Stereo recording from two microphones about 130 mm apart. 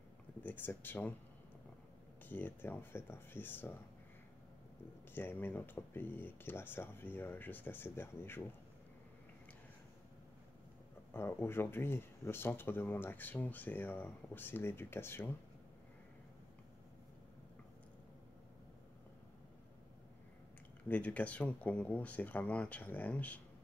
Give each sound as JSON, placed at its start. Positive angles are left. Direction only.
{"t": 0.4, "sound": "speech", "side_deg": 15}
{"t": 2.2, "sound": "speech", "side_deg": 15}
{"t": 5.1, "sound": "speech", "side_deg": 15}
{"t": 11.1, "sound": "speech", "side_deg": 20}
{"t": 20.9, "sound": "speech", "side_deg": 10}